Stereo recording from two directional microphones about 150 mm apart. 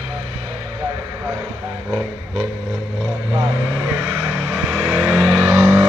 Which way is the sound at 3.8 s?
10° right (ahead or behind).